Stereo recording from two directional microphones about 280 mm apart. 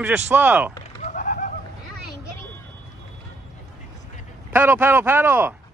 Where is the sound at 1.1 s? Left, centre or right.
Left.